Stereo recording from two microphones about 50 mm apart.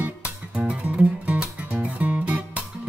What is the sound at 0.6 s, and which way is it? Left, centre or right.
Music, centre.